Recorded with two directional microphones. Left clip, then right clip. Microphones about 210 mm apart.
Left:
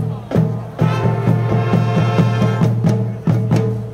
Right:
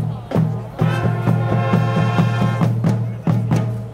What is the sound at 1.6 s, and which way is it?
Music, 20° right (ahead or behind).